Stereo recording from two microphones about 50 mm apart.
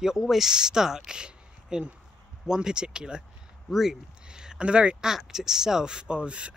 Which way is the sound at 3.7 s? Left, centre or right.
Centre.